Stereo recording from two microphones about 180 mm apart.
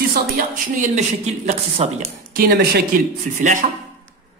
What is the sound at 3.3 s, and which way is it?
Speech, 45° right (ahead or behind).